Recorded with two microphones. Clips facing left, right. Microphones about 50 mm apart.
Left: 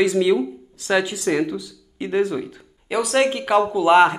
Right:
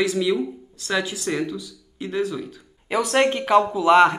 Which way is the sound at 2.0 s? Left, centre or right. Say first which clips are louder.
Left 4 dB; left.